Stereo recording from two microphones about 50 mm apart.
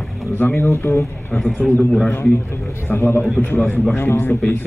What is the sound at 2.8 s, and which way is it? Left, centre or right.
A man's voice, left.